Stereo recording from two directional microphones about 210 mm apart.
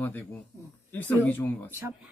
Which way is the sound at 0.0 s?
10° left (ahead or behind).